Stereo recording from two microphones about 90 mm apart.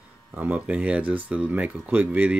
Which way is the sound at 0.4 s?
15° right (ahead or behind).